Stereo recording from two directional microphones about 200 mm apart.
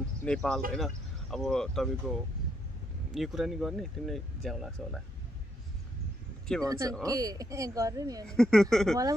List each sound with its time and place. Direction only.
0.2 s speech: 5° left (ahead or behind)
3.2 s speech: centre (ahead or behind)
6.6 s speech: 15° right (ahead or behind)
8.3 s speech: 5° left (ahead or behind)